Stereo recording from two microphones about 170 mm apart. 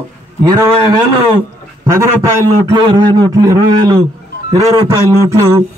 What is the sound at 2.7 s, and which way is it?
A man's voice, 25° right (ahead or behind).